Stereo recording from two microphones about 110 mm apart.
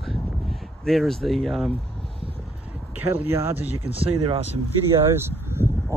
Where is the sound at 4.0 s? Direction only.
60° right (ahead or behind).